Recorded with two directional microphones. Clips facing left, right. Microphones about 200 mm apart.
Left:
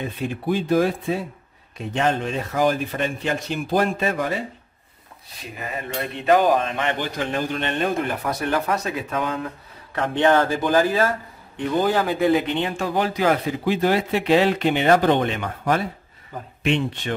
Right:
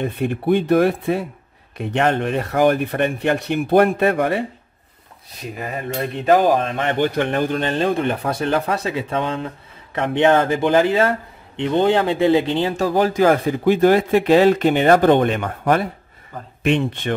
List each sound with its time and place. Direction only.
0.0 s speech: 60° right (ahead or behind)
6.3 s speech: centre (ahead or behind)
6.8 s speech: 50° right (ahead or behind)
7.6 s a man's voice: 30° right (ahead or behind)
12.6 s speech: 40° right (ahead or behind)